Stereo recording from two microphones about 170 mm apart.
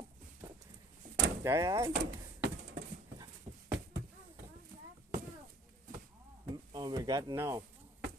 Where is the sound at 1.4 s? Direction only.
20° right (ahead or behind).